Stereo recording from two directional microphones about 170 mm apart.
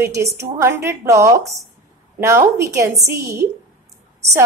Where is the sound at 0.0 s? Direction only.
15° right (ahead or behind).